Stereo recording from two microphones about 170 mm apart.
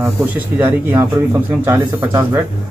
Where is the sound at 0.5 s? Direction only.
15° right (ahead or behind).